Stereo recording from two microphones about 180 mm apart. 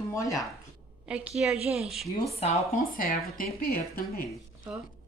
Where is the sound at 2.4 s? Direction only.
50° left (ahead or behind).